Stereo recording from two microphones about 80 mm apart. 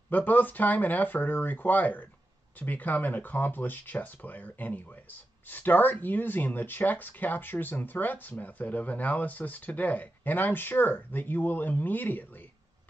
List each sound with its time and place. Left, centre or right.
0.1 s speech: left